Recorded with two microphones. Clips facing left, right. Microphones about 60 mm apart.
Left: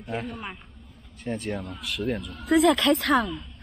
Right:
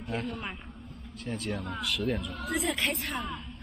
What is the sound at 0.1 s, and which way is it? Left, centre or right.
Speech, centre.